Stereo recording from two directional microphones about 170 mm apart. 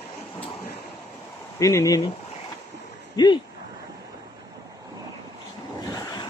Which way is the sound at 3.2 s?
25° left (ahead or behind).